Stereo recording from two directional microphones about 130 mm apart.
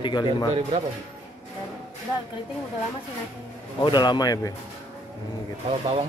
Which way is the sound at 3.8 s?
35° left (ahead or behind).